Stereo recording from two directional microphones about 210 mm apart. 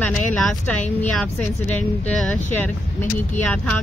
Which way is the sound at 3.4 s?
5° left (ahead or behind).